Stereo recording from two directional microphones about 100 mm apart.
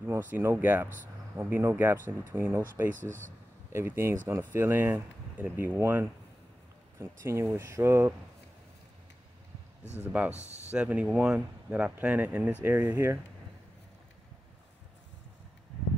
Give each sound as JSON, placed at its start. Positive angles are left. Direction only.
{"t": 0.0, "sound": "speech", "side_deg": -20}
{"t": 10.0, "sound": "speech", "side_deg": -15}